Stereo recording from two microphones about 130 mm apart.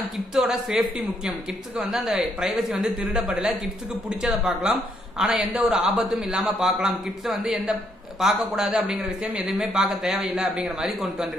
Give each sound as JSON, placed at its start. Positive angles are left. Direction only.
{"t": 0.3, "sound": "a man's voice", "side_deg": -5}